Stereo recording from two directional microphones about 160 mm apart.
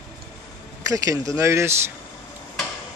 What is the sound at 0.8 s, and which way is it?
Speech, 20° right (ahead or behind).